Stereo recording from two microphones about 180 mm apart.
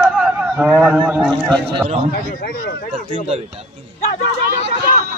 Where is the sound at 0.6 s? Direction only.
5° right (ahead or behind).